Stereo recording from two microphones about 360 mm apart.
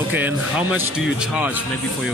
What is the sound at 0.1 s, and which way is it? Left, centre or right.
Speech, centre.